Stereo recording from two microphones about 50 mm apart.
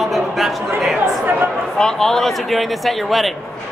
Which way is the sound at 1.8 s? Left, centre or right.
Centre.